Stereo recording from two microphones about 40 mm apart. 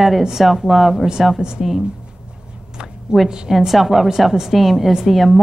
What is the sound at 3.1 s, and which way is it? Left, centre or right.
Speech, right.